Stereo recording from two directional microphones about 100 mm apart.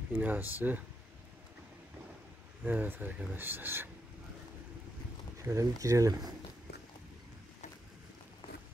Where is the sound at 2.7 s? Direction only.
15° right (ahead or behind).